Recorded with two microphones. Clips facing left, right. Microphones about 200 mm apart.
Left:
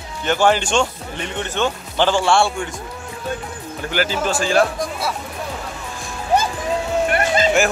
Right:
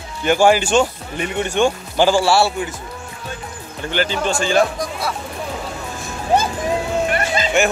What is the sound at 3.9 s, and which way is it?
Speech, 5° left (ahead or behind).